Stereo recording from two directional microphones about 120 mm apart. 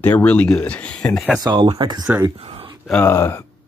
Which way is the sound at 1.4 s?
40° right (ahead or behind).